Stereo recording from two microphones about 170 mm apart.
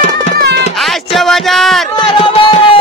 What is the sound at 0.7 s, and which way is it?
Music, centre (ahead or behind).